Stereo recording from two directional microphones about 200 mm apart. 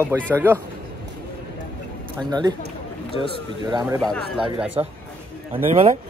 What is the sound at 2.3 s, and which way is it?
Speech, 20° right (ahead or behind).